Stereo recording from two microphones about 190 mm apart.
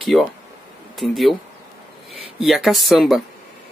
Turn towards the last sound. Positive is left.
turn(degrees=0)  # may be behind; listen again after turning